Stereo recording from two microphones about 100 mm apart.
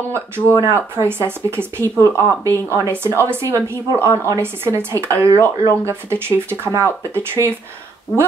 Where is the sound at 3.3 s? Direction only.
25° right (ahead or behind).